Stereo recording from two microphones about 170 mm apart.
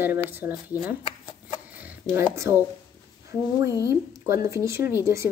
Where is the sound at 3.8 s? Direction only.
15° right (ahead or behind).